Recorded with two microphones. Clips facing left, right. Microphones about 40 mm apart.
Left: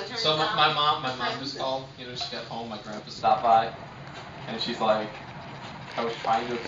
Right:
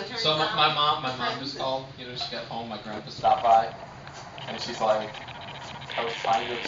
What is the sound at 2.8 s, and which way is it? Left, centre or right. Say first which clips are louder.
Speech: right 2 dB; right.